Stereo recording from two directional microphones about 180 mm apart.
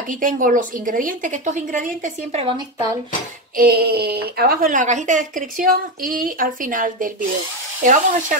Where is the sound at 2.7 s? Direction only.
20° right (ahead or behind).